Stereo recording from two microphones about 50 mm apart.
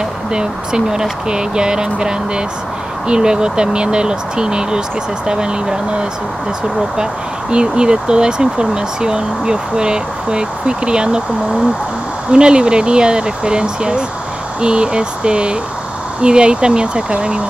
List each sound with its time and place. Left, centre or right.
0.3 s speech: centre
7.5 s speech: centre
12.3 s speech: centre